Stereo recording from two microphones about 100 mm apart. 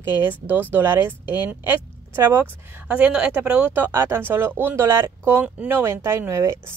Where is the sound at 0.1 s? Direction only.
20° right (ahead or behind).